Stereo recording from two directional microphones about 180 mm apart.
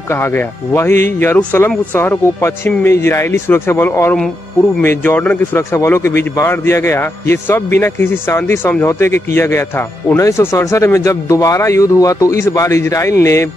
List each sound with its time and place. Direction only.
0.1 s speech: 15° left (ahead or behind)